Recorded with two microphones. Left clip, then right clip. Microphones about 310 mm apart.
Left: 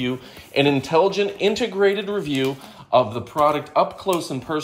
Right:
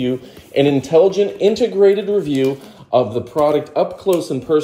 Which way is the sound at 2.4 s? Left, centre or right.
Left.